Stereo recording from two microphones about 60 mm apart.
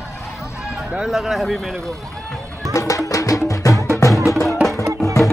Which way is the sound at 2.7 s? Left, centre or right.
Left.